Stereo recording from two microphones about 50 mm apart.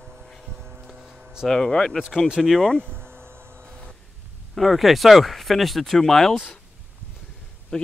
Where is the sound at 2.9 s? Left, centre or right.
Right.